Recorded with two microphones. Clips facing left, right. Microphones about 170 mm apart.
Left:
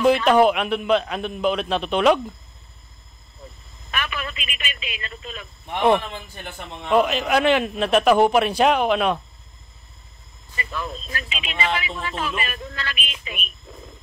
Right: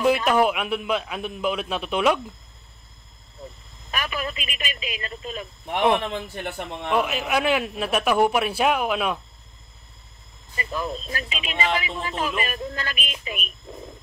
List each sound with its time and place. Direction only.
0.0 s a man's voice: 5° right (ahead or behind)
3.9 s speech: 35° right (ahead or behind)
5.9 s a man's voice: 65° right (ahead or behind)
6.9 s a man's voice: 5° right (ahead or behind)
10.5 s speech: 35° right (ahead or behind)
12.1 s a man's voice: 15° right (ahead or behind)
12.4 s speech: 40° right (ahead or behind)